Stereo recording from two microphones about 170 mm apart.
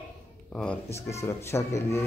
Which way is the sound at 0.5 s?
5° left (ahead or behind).